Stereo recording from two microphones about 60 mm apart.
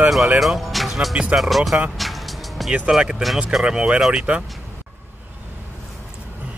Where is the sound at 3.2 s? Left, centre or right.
Centre.